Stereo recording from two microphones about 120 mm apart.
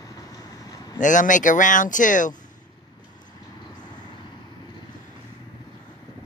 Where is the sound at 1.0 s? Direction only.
90° left.